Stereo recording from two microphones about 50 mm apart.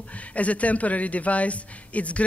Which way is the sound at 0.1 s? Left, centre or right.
Left.